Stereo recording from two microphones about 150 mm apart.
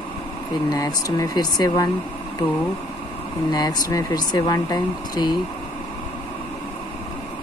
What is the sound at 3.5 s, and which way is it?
Speech, 25° left (ahead or behind).